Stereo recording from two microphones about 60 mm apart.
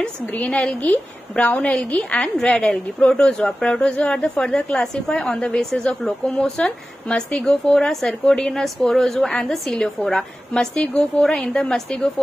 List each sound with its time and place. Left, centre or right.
0.3 s a woman's voice: left